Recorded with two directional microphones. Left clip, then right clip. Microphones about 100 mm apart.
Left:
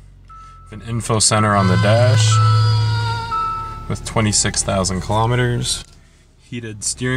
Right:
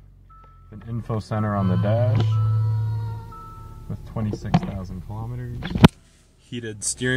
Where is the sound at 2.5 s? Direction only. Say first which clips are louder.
Left 14 dB; 90° left.